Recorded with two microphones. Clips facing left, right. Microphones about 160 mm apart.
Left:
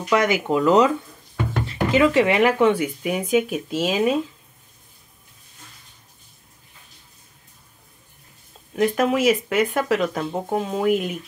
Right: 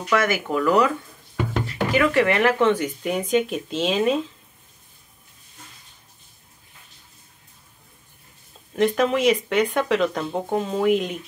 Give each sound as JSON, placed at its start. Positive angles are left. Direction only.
{"t": 0.1, "sound": "speech", "side_deg": 15}
{"t": 8.7, "sound": "speech", "side_deg": 5}